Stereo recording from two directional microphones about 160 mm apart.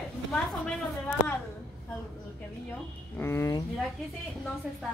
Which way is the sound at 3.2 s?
15° left (ahead or behind).